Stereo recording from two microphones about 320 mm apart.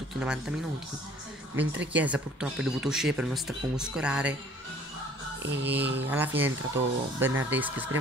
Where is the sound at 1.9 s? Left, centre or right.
Centre.